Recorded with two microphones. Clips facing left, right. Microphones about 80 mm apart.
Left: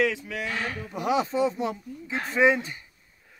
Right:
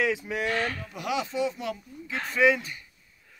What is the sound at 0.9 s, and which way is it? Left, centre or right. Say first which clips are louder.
Speech: left 6 dB; left.